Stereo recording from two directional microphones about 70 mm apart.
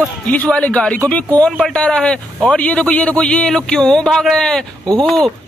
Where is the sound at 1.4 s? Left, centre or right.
Centre.